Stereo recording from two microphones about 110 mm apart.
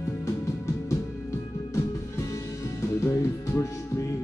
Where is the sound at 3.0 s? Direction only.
25° left (ahead or behind).